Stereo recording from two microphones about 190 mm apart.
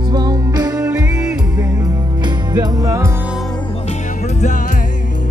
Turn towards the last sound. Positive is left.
turn(degrees=40)  # may be behind; listen again after turning